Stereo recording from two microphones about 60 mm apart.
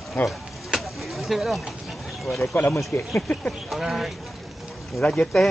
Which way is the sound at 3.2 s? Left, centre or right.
Left.